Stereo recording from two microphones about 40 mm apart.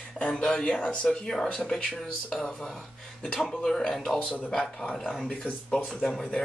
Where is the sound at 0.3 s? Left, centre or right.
Left.